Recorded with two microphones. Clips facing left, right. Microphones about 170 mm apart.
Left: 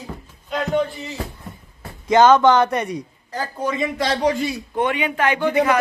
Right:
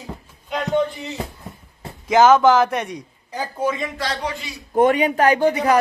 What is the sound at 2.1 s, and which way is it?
Speech, 5° right (ahead or behind).